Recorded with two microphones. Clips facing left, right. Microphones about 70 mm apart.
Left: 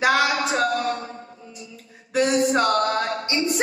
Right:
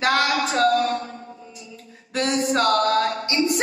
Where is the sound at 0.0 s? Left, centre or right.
Centre.